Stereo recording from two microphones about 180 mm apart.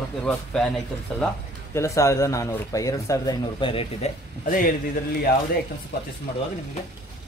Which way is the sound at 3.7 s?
40° left (ahead or behind).